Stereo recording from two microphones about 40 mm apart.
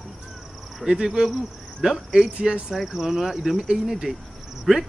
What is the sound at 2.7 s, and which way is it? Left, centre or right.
Speech, centre.